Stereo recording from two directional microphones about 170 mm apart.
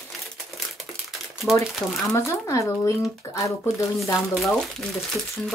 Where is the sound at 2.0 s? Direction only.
20° left (ahead or behind).